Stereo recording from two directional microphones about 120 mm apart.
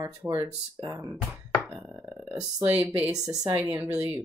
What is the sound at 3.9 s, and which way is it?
Speech, 30° right (ahead or behind).